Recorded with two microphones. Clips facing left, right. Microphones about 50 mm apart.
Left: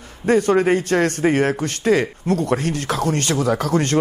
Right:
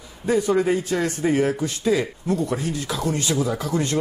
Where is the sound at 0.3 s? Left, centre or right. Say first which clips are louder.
Left 4 dB; left.